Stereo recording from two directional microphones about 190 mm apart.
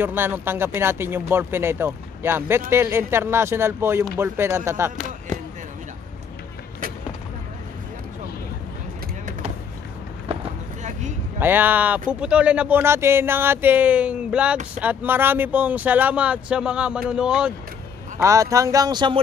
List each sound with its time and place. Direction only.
0.0 s speech: 10° right (ahead or behind)
10.8 s vehicle: 40° right (ahead or behind)
11.3 s speech: 10° right (ahead or behind)
18.2 s speech: 15° right (ahead or behind)